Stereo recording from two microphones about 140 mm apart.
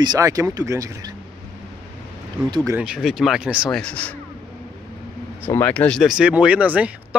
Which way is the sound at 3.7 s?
10° left (ahead or behind).